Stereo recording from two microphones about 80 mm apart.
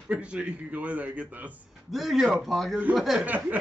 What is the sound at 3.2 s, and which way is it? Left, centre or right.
Speech, centre.